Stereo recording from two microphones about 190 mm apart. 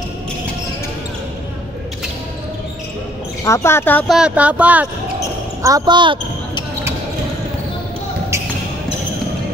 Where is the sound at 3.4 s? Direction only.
15° left (ahead or behind).